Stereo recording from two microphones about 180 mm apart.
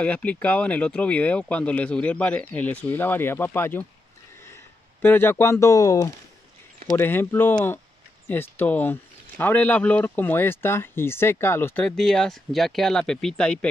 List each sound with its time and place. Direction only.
0.0 s speech: 5° left (ahead or behind)
5.0 s speech: 10° left (ahead or behind)